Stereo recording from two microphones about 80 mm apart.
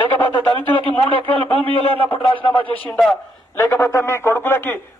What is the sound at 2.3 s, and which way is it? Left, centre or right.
Speech, left.